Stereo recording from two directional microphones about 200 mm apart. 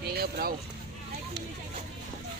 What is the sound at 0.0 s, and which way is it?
Boat, 50° right (ahead or behind).